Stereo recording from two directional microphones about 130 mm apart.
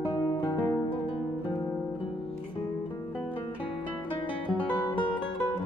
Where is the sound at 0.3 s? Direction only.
35° left (ahead or behind).